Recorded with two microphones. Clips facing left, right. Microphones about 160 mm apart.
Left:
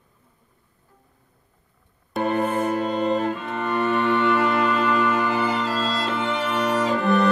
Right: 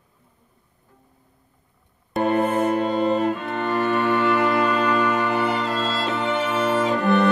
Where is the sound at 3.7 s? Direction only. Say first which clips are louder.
Even; centre (ahead or behind).